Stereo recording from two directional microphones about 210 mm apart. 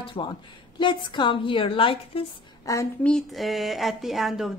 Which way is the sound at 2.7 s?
15° left (ahead or behind).